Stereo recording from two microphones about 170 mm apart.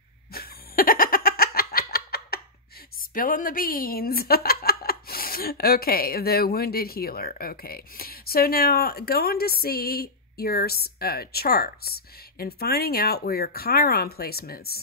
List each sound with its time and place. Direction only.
0.3 s laughter: 60° left (ahead or behind)
3.0 s a woman's voice: 55° left (ahead or behind)